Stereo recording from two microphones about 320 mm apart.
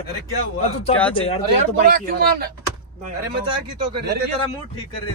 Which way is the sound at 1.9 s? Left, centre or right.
Right.